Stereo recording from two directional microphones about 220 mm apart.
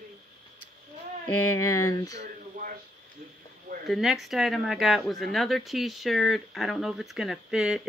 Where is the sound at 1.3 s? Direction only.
75° left (ahead or behind).